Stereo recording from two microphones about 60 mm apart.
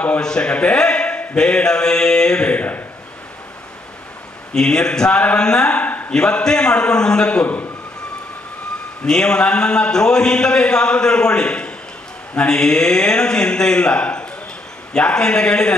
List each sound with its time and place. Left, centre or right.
0.2 s a man's voice: centre
4.6 s a man's voice: centre
6.1 s a man's voice: centre
9.0 s a man's voice: centre